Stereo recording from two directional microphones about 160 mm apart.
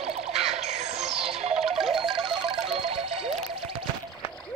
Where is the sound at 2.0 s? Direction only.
35° right (ahead or behind).